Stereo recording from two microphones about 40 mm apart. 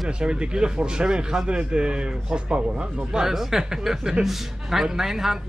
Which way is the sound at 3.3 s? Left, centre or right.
Centre.